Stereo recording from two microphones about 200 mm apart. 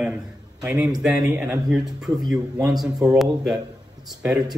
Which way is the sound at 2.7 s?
5° right (ahead or behind).